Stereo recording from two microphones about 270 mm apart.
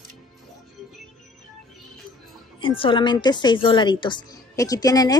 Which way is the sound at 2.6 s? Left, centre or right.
Centre.